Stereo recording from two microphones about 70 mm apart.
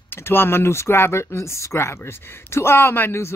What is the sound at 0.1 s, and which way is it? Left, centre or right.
Speech, left.